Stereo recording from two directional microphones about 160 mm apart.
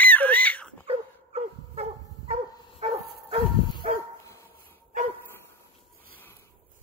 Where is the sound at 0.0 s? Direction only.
10° left (ahead or behind).